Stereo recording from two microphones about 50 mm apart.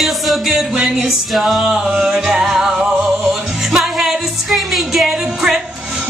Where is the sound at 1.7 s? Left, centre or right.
Centre.